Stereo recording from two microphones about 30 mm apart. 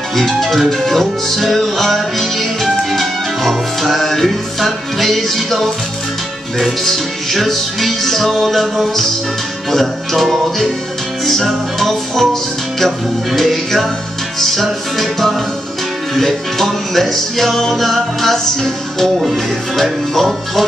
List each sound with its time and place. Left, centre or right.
0.1 s music: centre